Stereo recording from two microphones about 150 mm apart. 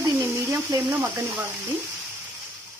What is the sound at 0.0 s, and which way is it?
Frying, 20° right (ahead or behind).